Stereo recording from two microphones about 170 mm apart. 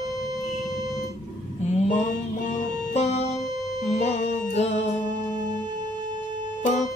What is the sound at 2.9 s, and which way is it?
Music, 40° left (ahead or behind).